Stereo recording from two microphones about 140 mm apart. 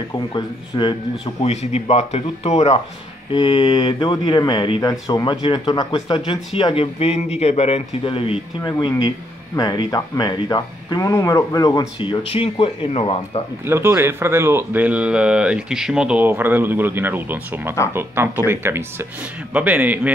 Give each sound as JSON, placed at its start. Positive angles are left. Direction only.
{"t": 0.1, "sound": "speech", "side_deg": 35}
{"t": 1.2, "sound": "speech", "side_deg": 50}
{"t": 3.3, "sound": "speech", "side_deg": 35}
{"t": 8.7, "sound": "speech", "side_deg": 30}
{"t": 13.7, "sound": "speech", "side_deg": -20}